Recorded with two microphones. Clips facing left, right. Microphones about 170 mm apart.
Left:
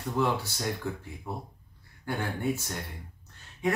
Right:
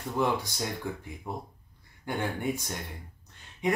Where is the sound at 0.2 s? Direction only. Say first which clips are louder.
Even; 15° right (ahead or behind).